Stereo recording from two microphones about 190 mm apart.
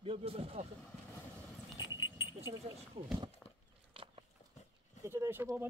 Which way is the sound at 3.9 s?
30° right (ahead or behind).